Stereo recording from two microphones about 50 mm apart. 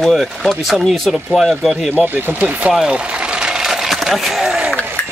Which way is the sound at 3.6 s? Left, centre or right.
Centre.